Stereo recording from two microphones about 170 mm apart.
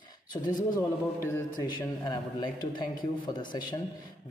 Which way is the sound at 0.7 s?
15° left (ahead or behind).